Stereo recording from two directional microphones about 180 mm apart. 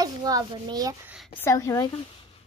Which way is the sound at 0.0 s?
20° right (ahead or behind).